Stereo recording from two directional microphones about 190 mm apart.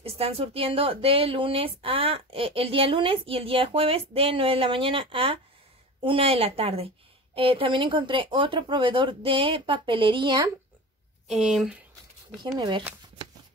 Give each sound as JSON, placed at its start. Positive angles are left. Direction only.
{"t": 0.0, "sound": "a woman's voice", "side_deg": -30}
{"t": 11.2, "sound": "speech", "side_deg": 0}
{"t": 12.5, "sound": "speech", "side_deg": -20}